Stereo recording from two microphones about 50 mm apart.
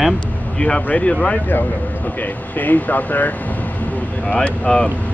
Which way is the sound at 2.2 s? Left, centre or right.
Left.